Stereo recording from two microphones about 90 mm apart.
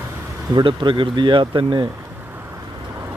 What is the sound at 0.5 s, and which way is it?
Speech, 65° right (ahead or behind).